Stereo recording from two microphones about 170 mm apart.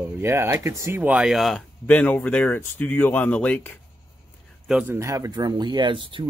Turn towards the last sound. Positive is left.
turn(degrees=-30)  # may be behind; listen again after turning